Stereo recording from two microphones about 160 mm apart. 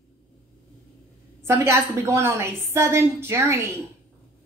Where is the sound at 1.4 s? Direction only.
15° right (ahead or behind).